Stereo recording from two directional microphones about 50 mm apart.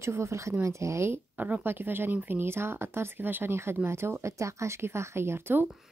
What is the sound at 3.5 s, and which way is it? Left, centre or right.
Speech, right.